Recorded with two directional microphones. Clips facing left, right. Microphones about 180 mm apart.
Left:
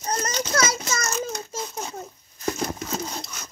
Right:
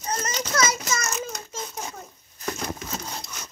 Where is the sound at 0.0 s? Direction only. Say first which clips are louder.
Left 2 dB; 35° left (ahead or behind).